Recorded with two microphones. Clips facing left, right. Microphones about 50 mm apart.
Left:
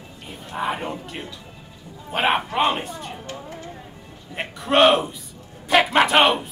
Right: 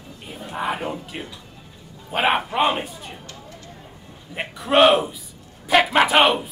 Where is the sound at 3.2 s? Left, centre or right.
Left.